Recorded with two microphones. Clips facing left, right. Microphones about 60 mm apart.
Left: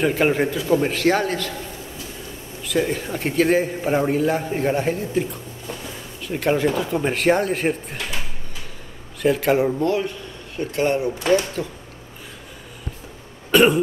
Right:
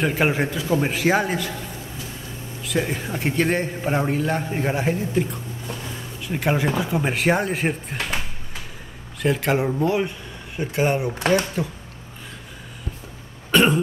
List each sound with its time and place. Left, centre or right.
0.0 s a man's voice: centre
2.6 s a man's voice: centre
9.2 s a man's voice: centre
9.8 s a man's voice: centre
13.5 s cough: centre